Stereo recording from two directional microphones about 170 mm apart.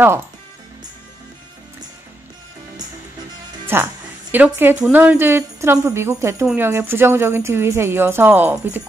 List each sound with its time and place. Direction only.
3.7 s speech: 15° right (ahead or behind)